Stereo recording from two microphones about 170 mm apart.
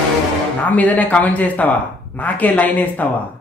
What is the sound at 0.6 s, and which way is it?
Speech, 10° left (ahead or behind).